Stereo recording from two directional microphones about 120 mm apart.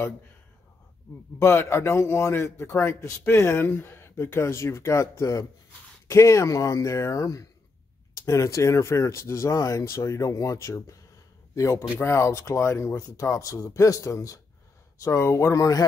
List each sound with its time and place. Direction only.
1.4 s a man's voice: 20° left (ahead or behind)